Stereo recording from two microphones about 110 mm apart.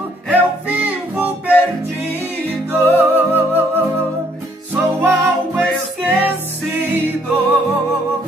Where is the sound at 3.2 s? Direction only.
15° right (ahead or behind).